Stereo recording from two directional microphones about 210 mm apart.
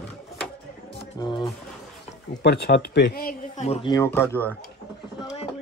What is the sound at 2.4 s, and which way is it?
Speech, 50° left (ahead or behind).